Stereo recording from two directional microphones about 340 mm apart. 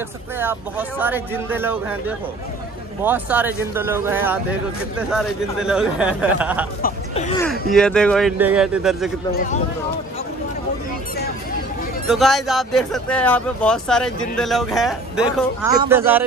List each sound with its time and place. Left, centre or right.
0.4 s speech: centre
6.8 s speech: centre
7.7 s speech: centre
12.1 s speech: centre